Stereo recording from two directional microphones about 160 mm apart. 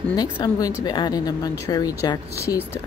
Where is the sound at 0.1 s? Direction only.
25° left (ahead or behind).